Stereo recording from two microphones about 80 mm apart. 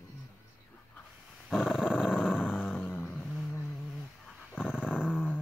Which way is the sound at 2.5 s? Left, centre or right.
Left.